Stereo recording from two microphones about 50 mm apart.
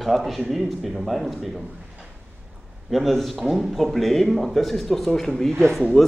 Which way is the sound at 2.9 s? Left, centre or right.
Centre.